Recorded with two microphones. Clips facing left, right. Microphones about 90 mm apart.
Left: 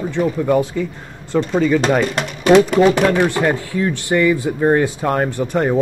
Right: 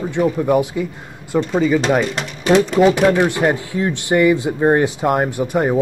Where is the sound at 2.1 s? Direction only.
60° left (ahead or behind).